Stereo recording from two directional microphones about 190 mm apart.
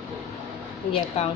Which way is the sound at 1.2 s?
35° left (ahead or behind).